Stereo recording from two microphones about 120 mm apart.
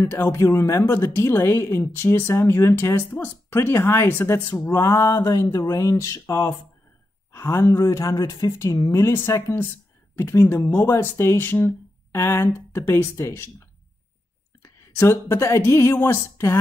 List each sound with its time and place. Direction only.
0.0 s speech: 20° left (ahead or behind)
14.6 s speech: 25° left (ahead or behind)